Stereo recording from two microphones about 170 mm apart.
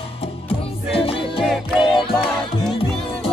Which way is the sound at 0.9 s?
35° left (ahead or behind).